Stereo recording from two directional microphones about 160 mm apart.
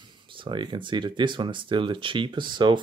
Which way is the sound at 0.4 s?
30° right (ahead or behind).